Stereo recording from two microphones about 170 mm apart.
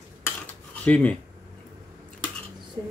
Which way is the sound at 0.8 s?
10° left (ahead or behind).